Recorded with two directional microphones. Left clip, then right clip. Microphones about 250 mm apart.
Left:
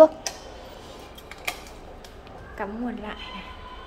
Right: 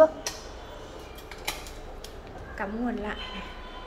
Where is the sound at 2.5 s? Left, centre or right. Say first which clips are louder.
Even; centre.